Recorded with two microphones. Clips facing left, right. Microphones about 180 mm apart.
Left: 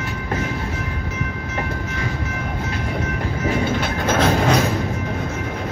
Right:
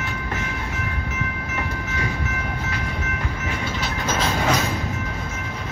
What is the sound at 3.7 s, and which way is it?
Train, 55° left (ahead or behind).